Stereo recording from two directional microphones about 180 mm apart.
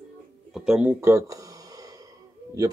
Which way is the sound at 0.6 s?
5° right (ahead or behind).